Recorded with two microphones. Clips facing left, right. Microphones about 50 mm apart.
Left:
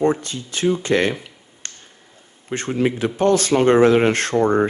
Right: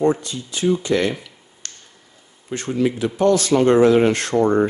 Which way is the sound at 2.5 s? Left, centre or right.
Left.